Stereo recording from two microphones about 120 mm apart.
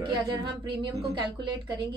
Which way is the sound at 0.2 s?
40° right (ahead or behind).